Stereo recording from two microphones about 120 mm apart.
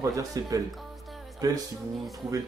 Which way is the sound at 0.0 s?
25° right (ahead or behind).